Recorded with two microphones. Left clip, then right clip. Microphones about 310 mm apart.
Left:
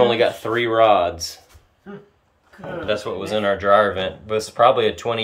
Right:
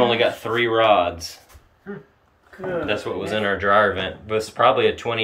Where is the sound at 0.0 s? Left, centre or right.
Centre.